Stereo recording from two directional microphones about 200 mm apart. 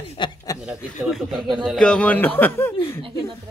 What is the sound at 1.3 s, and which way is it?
Speech, 20° right (ahead or behind).